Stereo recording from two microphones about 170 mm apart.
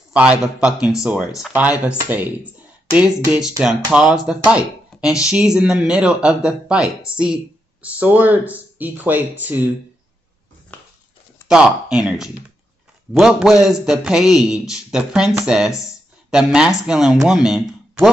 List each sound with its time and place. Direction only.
0.1 s a man's voice: 5° right (ahead or behind)
10.7 s a sound: 10° left (ahead or behind)
11.4 s a man's voice: 5° right (ahead or behind)